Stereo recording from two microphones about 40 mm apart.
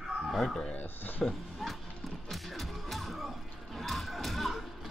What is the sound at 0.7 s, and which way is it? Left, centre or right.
Speech, left.